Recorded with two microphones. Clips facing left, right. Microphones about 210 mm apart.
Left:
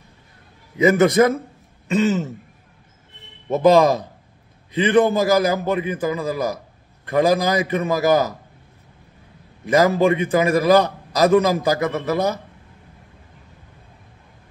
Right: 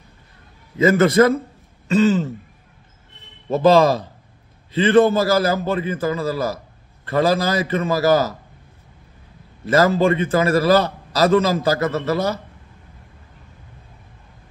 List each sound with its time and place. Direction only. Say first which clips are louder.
0.7 s a man's voice: even; 15° left (ahead or behind)
1.9 s throat clearing: right 3 dB; 20° left (ahead or behind)
3.4 s a man's voice: even; 15° left (ahead or behind)
9.7 s a man's voice: even; 15° left (ahead or behind)